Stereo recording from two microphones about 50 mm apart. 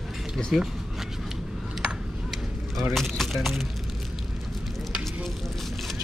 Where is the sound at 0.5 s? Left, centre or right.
Centre.